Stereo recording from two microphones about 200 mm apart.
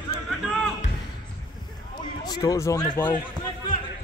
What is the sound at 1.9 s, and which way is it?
Speech, 20° left (ahead or behind).